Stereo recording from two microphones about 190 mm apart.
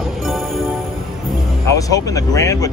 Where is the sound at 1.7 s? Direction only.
20° left (ahead or behind).